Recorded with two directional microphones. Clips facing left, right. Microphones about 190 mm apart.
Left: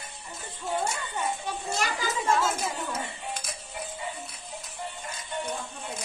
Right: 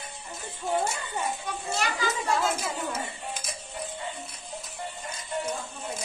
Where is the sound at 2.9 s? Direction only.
Centre (ahead or behind).